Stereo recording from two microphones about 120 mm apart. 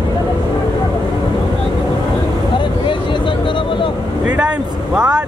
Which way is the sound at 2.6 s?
45° left (ahead or behind).